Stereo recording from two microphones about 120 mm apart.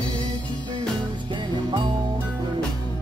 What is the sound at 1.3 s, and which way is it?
Music, 40° right (ahead or behind).